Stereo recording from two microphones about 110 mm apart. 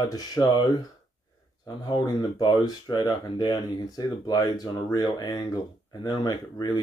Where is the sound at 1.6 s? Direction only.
40° left (ahead or behind).